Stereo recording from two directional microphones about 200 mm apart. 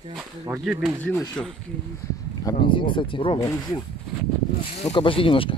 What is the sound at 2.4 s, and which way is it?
Speech, 25° left (ahead or behind).